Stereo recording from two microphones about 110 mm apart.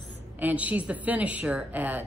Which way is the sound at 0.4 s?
15° right (ahead or behind).